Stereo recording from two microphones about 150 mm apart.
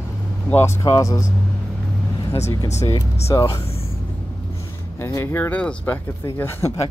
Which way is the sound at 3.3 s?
20° left (ahead or behind).